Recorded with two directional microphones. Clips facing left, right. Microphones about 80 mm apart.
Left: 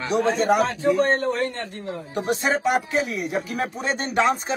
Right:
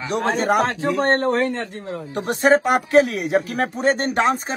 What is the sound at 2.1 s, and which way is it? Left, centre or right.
Speech, right.